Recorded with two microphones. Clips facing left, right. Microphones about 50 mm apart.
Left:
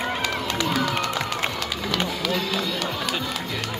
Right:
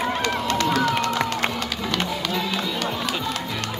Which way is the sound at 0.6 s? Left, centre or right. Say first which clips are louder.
Right 3 dB; centre.